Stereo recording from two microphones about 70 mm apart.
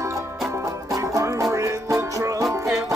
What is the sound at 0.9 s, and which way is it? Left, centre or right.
Music, right.